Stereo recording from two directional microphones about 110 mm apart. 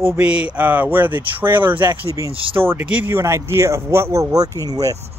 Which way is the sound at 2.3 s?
55° right (ahead or behind).